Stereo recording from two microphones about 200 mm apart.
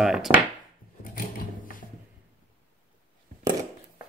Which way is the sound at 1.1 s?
45° left (ahead or behind).